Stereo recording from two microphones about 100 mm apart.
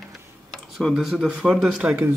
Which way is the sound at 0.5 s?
5° left (ahead or behind).